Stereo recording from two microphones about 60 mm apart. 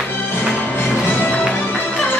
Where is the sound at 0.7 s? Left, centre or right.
Left.